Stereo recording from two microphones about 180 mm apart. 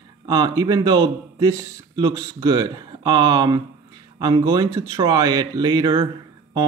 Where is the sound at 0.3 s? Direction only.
20° right (ahead or behind).